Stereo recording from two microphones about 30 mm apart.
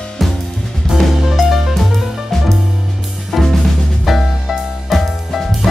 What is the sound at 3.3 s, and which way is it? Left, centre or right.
Drum kit, centre.